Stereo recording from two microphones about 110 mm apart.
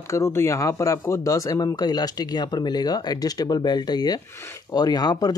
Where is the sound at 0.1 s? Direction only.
25° left (ahead or behind).